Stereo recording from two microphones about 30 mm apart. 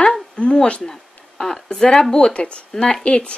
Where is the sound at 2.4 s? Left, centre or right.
Left.